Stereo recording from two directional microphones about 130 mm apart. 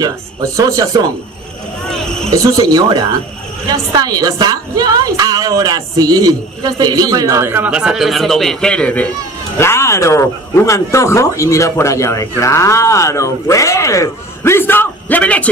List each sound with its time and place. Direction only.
0.0 s a woman's voice: 25° right (ahead or behind)
1.9 s vehicle: 5° left (ahead or behind)
2.3 s a woman's voice: 25° right (ahead or behind); by 9.1 s 10° left (ahead or behind)
9.6 s speech: 20° left (ahead or behind)